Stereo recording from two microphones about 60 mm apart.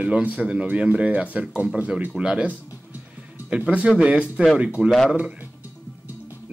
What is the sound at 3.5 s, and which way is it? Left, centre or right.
Speech, centre.